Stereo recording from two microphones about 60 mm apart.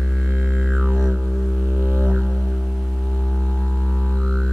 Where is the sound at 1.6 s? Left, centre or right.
Right.